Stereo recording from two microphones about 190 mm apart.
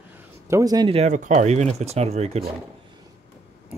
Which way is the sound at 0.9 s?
40° right (ahead or behind).